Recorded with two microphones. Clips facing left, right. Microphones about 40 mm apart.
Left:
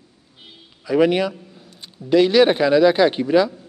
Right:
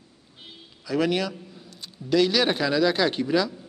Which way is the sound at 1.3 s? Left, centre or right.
Centre.